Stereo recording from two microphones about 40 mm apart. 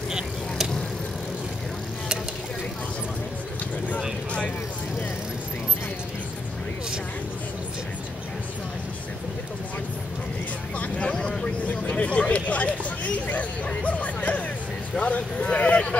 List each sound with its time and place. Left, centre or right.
10.8 s vehicle: left
11.9 s hubbub: left
13.8 s music: left
15.0 s a sound: left